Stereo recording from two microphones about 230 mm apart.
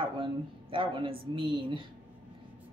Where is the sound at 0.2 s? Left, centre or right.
Right.